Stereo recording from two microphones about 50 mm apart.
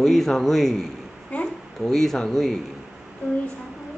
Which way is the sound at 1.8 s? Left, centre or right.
Centre.